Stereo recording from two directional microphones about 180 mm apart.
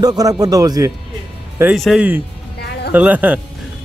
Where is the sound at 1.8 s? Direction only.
5° right (ahead or behind).